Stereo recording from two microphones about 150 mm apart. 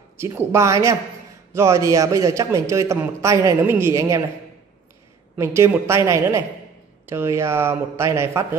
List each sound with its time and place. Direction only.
0.2 s a man's voice: 15° right (ahead or behind)
5.4 s speech: 15° right (ahead or behind)